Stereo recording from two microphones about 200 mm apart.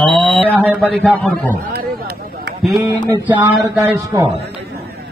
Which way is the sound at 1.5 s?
50° right (ahead or behind).